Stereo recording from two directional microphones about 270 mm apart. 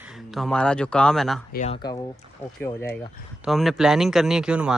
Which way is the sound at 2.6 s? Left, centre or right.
Centre.